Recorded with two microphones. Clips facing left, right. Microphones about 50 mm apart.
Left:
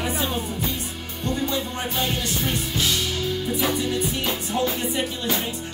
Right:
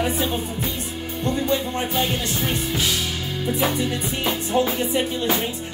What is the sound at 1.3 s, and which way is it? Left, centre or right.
Music, centre.